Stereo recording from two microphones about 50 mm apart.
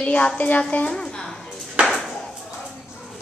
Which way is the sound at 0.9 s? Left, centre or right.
Centre.